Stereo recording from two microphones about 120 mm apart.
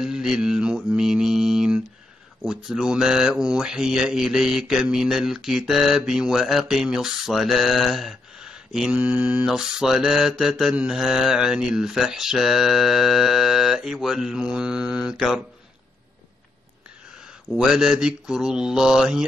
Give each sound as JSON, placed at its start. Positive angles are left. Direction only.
{"t": 0.0, "sound": "mantra", "side_deg": -5}
{"t": 2.4, "sound": "speech", "side_deg": -5}
{"t": 17.2, "sound": "speech", "side_deg": -5}